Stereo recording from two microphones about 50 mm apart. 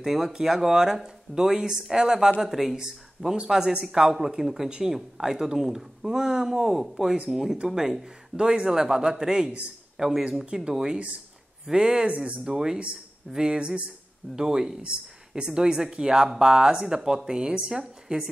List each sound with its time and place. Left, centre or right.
0.0 s a man's voice: centre